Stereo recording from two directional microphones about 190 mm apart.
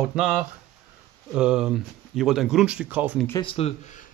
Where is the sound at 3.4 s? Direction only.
30° left (ahead or behind).